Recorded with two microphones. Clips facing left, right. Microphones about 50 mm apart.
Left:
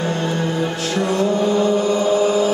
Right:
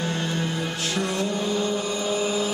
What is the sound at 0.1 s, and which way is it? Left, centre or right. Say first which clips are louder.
Music: left 6 dB; centre.